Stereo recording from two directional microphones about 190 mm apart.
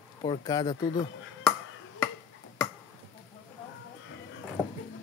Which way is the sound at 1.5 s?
20° left (ahead or behind).